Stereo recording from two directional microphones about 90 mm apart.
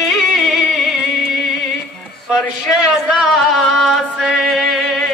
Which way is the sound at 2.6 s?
Centre (ahead or behind).